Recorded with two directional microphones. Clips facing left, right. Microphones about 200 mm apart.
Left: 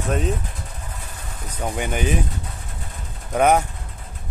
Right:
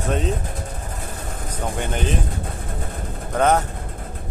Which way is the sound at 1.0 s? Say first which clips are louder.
Right 6 dB; 50° right (ahead or behind).